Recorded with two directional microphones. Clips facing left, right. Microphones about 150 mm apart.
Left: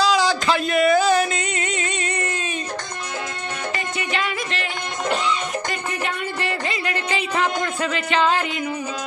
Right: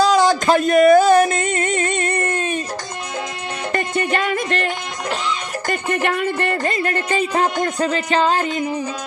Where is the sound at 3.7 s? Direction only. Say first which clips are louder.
Right 8 dB; 50° right (ahead or behind).